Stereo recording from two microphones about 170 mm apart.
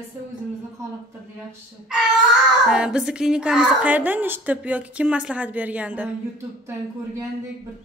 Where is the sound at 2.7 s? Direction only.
5° right (ahead or behind).